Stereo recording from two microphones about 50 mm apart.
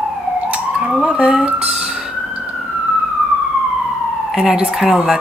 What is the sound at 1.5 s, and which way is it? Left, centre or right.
Emergency vehicle, centre.